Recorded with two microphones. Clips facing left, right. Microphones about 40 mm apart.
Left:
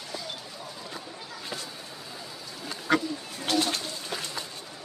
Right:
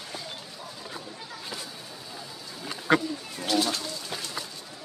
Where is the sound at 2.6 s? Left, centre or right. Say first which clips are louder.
Right 2 dB; right.